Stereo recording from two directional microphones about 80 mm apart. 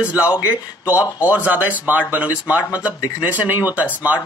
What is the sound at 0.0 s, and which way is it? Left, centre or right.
Speech, centre.